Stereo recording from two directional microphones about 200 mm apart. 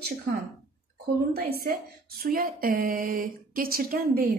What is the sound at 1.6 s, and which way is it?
Speech, 45° right (ahead or behind).